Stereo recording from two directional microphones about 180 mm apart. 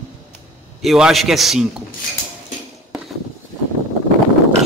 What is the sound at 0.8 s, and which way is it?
Speech, centre (ahead or behind).